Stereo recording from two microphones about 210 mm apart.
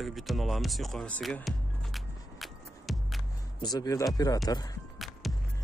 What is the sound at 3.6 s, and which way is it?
Speech, 20° left (ahead or behind).